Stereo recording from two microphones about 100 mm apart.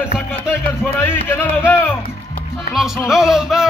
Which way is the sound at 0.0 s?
20° left (ahead or behind).